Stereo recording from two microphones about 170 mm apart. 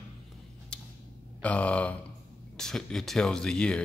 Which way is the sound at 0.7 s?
5° left (ahead or behind).